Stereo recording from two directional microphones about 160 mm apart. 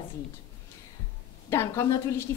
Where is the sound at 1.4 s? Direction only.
15° left (ahead or behind).